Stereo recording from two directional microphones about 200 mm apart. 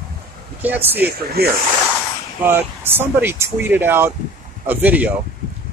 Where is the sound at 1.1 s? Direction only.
50° right (ahead or behind).